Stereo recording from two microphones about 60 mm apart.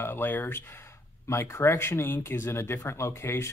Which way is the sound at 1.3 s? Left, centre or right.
Left.